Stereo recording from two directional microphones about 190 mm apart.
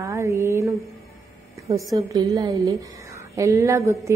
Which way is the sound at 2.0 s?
20° right (ahead or behind).